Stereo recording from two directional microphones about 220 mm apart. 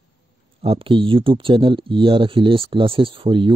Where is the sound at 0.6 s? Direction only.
25° right (ahead or behind).